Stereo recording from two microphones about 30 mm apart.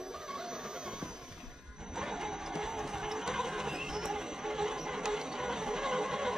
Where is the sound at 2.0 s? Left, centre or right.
Centre.